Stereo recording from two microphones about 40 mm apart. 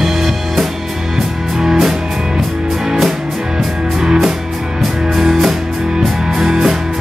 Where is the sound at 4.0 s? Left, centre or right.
Centre.